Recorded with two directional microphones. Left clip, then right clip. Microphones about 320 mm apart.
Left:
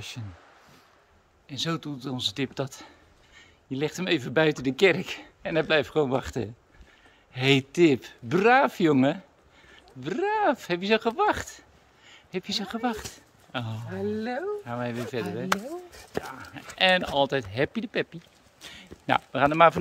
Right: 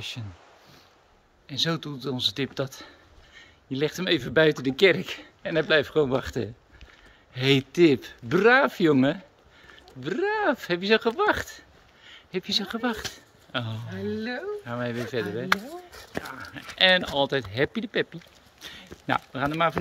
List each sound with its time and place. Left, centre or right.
1.5 s speech: centre
13.8 s speech: centre
14.6 s speech: centre
16.3 s speech: centre